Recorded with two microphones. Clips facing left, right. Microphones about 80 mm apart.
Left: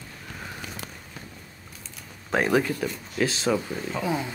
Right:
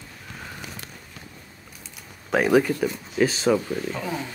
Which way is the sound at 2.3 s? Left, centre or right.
Centre.